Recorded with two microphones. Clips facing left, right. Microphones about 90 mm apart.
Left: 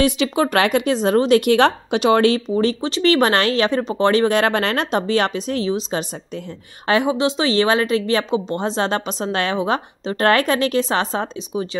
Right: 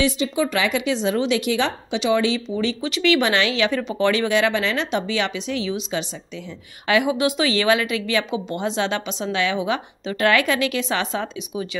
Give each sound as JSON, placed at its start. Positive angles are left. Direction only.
{"t": 0.2, "sound": "a woman's voice", "side_deg": 60}